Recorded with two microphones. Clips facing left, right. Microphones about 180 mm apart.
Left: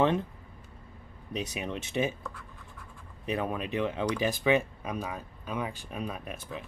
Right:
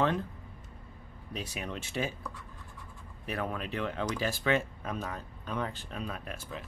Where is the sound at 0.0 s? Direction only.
20° left (ahead or behind).